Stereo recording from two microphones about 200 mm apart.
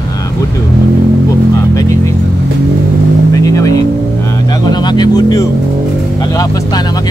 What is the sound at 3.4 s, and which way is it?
Vehicle, 15° left (ahead or behind).